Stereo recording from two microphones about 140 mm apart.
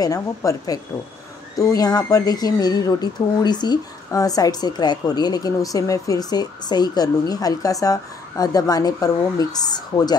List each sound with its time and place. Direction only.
0.0 s speech: 25° left (ahead or behind)